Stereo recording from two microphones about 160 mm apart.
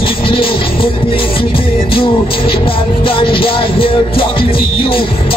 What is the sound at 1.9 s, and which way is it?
Music, 35° left (ahead or behind).